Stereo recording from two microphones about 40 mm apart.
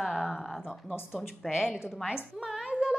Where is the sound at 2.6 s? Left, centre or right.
Centre.